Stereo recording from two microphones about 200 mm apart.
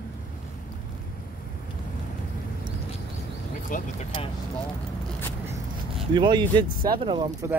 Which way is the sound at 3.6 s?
40° left (ahead or behind).